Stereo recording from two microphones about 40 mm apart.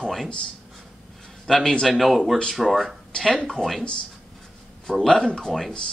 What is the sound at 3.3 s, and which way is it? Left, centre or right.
Speech, centre.